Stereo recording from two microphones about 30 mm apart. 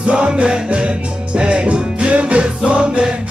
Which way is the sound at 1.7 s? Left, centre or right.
Right.